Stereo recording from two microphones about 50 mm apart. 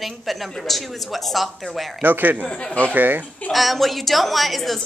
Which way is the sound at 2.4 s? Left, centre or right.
Centre.